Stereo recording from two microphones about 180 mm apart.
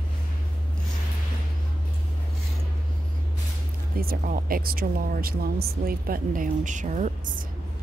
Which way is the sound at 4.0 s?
55° right (ahead or behind).